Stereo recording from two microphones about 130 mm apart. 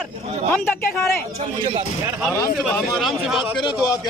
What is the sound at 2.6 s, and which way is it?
Speech, centre (ahead or behind).